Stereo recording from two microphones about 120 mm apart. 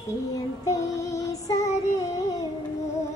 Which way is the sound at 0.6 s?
30° left (ahead or behind).